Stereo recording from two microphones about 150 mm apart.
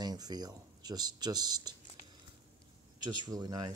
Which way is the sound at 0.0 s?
25° right (ahead or behind).